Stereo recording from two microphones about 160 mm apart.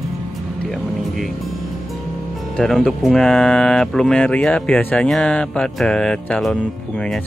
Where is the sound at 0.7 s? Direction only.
Centre (ahead or behind).